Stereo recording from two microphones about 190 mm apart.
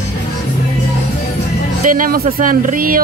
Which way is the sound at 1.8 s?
45° right (ahead or behind).